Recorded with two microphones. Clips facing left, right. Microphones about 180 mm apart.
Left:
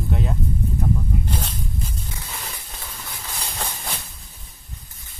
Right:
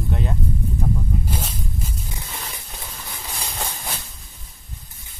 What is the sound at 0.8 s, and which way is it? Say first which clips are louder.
Snake: left 2 dB; 10° right (ahead or behind).